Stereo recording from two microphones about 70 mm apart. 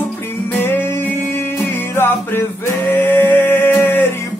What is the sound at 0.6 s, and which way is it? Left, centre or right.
Music, left.